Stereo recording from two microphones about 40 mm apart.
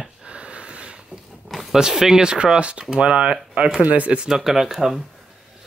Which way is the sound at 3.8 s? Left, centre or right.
Right.